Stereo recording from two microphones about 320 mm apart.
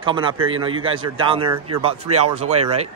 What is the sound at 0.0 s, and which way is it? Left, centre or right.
A man's voice, centre.